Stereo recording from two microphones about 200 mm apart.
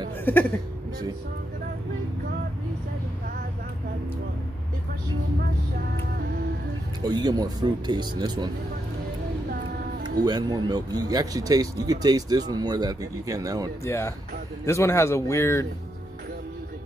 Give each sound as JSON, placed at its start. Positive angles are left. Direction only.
{"t": 0.2, "sound": "speech", "side_deg": 10}
{"t": 7.0, "sound": "speech", "side_deg": -20}
{"t": 10.2, "sound": "speech", "side_deg": -20}
{"t": 13.8, "sound": "speech", "side_deg": 15}